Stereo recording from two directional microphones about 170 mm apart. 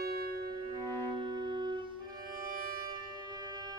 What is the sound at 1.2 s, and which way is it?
Music, 25° right (ahead or behind).